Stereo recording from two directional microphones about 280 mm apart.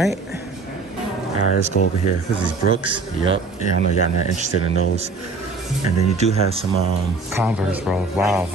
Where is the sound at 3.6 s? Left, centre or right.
Left.